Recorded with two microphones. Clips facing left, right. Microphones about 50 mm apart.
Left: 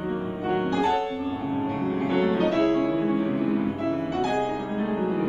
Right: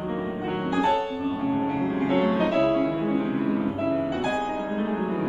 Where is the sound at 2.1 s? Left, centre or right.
Centre.